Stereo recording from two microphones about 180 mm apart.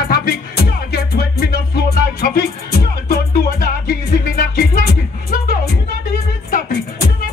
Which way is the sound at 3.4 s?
55° left (ahead or behind).